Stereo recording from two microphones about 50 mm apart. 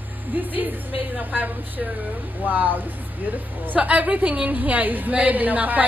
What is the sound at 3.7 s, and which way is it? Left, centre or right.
A woman's voice, right.